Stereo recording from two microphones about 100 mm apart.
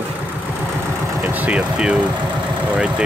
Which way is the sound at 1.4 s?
10° right (ahead or behind).